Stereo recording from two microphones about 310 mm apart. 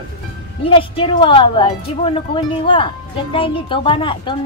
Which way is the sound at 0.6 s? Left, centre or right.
Centre.